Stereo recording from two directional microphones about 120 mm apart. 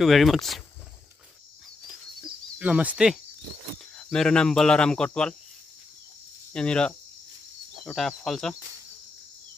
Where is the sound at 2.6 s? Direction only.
10° right (ahead or behind).